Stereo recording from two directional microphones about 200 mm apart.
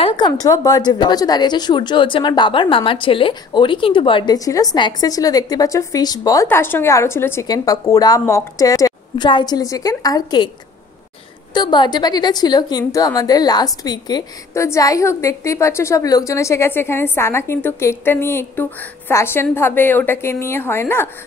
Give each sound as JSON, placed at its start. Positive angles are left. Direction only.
{"t": 0.0, "sound": "speech", "side_deg": 20}
{"t": 11.5, "sound": "a woman's voice", "side_deg": 20}